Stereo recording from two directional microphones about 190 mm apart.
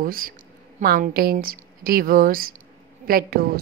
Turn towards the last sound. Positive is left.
turn(degrees=-50)  # may be behind; listen again after turning